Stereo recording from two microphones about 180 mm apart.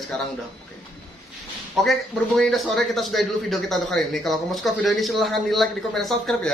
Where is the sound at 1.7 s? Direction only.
Centre (ahead or behind).